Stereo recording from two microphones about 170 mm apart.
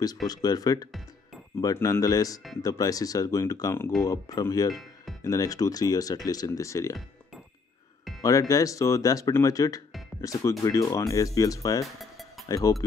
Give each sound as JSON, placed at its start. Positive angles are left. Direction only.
{"t": 0.3, "sound": "speech", "side_deg": 20}
{"t": 8.2, "sound": "speech", "side_deg": 20}
{"t": 11.8, "sound": "music", "side_deg": 0}
{"t": 12.4, "sound": "speech", "side_deg": 20}